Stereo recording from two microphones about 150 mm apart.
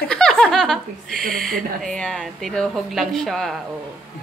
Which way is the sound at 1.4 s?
5° left (ahead or behind).